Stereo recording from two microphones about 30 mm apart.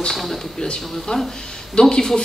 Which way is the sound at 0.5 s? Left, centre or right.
Left.